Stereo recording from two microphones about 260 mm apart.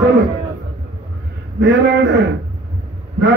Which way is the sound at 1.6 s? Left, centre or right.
Right.